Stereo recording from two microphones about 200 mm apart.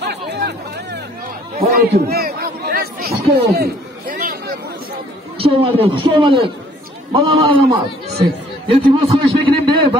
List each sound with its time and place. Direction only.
0.0 s hubbub: 55° right (ahead or behind)
1.6 s chatter: 50° right (ahead or behind)
5.4 s a man's voice: 25° right (ahead or behind)